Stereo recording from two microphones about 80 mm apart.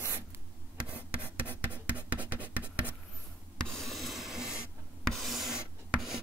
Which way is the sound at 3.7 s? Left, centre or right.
Centre.